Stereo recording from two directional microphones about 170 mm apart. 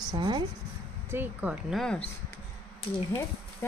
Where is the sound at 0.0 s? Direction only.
25° right (ahead or behind).